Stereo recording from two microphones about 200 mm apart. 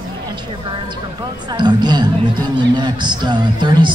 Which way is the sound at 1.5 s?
20° right (ahead or behind).